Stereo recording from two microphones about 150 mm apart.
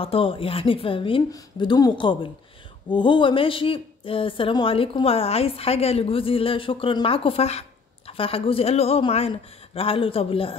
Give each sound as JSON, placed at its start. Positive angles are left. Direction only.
{"t": 0.0, "sound": "speech", "side_deg": 35}